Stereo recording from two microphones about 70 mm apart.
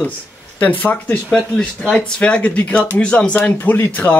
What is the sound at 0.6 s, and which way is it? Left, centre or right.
Speech, left.